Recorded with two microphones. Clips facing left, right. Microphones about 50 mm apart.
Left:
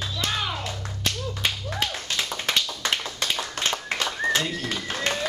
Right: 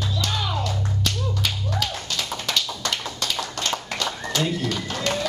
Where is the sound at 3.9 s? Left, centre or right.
Left.